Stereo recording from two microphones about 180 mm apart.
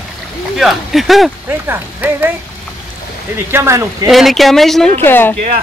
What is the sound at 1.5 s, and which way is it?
Speech, 10° right (ahead or behind).